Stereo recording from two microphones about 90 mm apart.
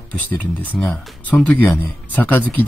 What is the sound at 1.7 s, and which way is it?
Speech, 20° left (ahead or behind).